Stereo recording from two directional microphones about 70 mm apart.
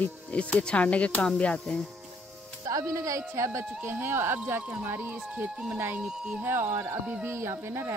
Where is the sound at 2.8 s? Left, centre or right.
Right.